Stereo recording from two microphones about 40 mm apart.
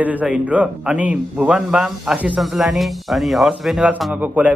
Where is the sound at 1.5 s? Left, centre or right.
Centre.